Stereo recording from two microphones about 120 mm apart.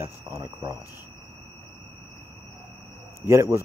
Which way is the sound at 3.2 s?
25° right (ahead or behind).